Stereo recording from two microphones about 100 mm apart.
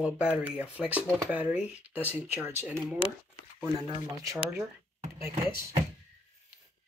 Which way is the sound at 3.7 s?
40° right (ahead or behind).